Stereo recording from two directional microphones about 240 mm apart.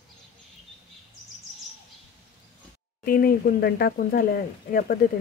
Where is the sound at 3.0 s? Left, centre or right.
Left.